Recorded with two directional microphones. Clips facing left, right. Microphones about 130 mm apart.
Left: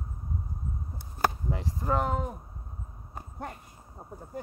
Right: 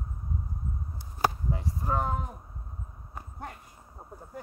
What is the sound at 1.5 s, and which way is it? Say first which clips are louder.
Speech: left 2 dB; 85° left.